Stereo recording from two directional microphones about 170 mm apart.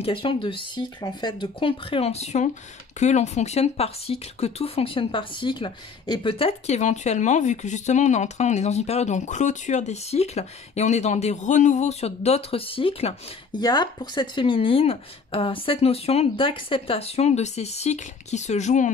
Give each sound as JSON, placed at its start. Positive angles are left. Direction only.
{"t": 0.0, "sound": "speech", "side_deg": 30}